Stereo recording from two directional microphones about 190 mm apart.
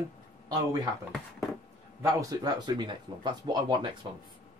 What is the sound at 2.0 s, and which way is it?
Speech, 20° right (ahead or behind).